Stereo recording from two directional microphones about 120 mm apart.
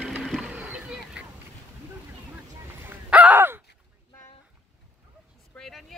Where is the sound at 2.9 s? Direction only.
10° right (ahead or behind).